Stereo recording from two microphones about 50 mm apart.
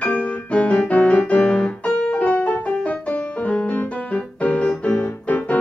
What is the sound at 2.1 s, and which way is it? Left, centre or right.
Music, left.